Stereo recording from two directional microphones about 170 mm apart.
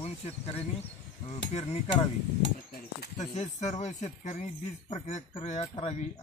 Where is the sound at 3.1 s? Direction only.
45° left (ahead or behind).